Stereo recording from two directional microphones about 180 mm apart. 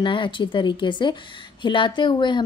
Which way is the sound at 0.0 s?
25° left (ahead or behind).